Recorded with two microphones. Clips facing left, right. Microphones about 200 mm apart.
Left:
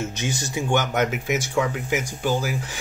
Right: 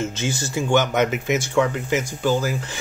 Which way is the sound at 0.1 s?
15° left (ahead or behind).